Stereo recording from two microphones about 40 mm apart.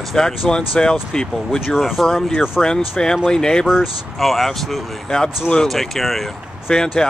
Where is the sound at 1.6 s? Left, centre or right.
Centre.